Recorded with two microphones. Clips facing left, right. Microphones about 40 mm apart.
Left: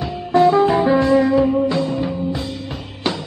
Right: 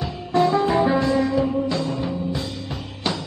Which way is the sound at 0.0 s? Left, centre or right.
Centre.